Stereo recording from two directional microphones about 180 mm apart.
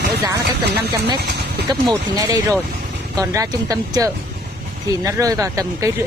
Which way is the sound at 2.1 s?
20° right (ahead or behind).